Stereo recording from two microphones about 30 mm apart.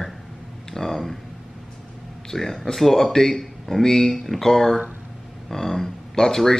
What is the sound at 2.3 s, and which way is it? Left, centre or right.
Speech, centre.